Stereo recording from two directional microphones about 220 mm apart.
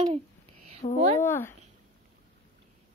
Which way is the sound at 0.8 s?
30° left (ahead or behind).